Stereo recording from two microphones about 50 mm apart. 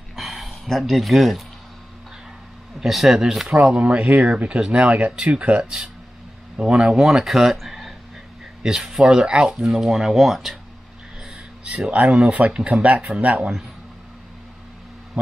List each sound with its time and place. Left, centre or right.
0.1 s a sound: centre
2.8 s speech: centre
11.6 s speech: right
12.9 s speech: centre
13.2 s speech: right